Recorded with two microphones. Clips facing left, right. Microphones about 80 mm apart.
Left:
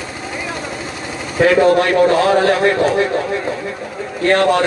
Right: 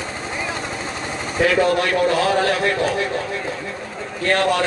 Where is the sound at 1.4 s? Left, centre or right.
Left.